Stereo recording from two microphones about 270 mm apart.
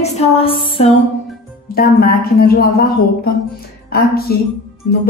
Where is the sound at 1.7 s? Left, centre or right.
Left.